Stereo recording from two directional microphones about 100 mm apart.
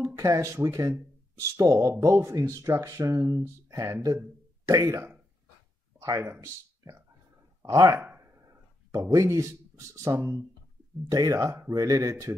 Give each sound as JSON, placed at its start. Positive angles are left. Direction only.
{"t": 0.0, "sound": "speech", "side_deg": -30}
{"t": 7.6, "sound": "speech", "side_deg": -40}
{"t": 8.2, "sound": "a sound", "side_deg": -30}
{"t": 11.1, "sound": "speech", "side_deg": -40}